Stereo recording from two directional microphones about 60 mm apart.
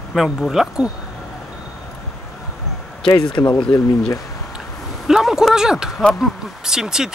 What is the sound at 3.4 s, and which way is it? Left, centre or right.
Speech, left.